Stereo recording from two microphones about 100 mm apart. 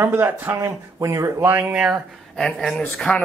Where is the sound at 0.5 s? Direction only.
35° right (ahead or behind); by 2.0 s 10° right (ahead or behind).